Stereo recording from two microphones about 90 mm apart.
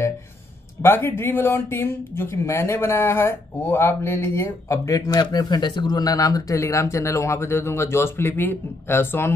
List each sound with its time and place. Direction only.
0.8 s speech: 25° left (ahead or behind)